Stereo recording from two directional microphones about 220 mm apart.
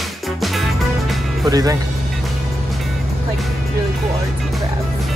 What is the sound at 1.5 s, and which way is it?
Speech, 15° right (ahead or behind).